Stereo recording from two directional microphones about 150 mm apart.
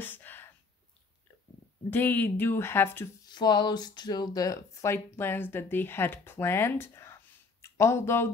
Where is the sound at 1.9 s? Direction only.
15° left (ahead or behind).